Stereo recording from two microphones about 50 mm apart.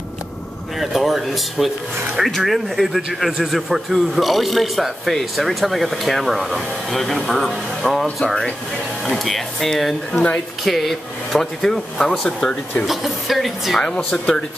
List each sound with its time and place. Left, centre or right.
0.7 s a man's voice: centre
12.8 s a man's voice: centre
13.7 s speech: centre